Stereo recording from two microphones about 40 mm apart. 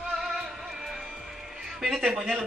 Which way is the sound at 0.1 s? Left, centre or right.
Centre.